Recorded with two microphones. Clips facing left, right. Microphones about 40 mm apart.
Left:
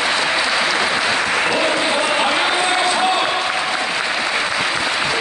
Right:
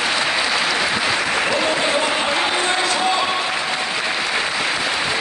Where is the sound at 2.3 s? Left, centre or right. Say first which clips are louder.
Left 2 dB; centre.